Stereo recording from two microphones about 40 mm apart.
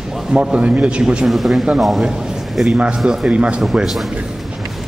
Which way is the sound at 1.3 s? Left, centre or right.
Centre.